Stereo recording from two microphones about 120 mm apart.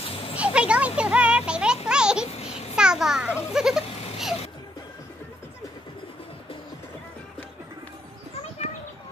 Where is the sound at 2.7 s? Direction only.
5° right (ahead or behind).